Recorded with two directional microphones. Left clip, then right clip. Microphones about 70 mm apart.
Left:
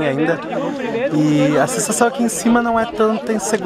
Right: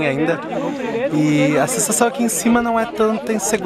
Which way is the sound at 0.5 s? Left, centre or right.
Left.